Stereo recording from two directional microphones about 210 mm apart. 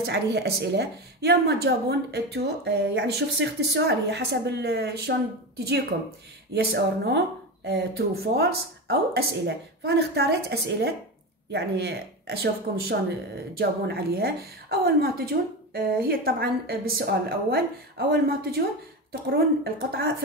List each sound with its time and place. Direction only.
0.0 s a woman's voice: 50° right (ahead or behind)